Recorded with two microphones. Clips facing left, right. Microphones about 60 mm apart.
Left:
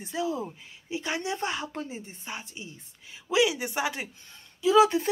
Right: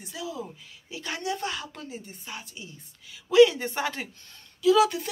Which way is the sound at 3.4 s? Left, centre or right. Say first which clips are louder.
Right 7 dB; centre.